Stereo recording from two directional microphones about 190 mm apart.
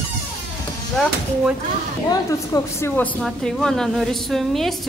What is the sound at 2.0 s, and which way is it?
A woman's voice, 15° left (ahead or behind).